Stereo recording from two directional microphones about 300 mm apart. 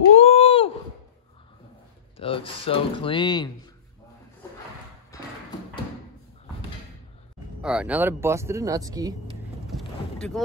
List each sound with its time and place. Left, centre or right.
0.1 s a sound: left
2.1 s speech: centre
7.6 s speech: centre
9.7 s boat: centre